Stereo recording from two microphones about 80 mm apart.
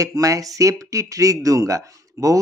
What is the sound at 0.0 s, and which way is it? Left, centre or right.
Speech, right.